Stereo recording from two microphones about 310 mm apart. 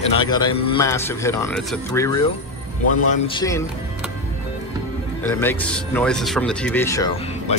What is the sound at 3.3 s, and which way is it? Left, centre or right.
Speech, centre.